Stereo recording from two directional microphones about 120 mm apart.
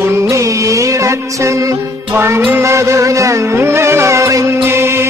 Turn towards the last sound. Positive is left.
turn(degrees=-20)  # may be behind; listen again after turning